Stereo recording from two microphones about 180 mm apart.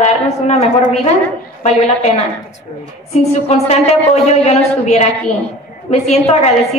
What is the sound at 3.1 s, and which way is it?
A woman's voice, 35° left (ahead or behind).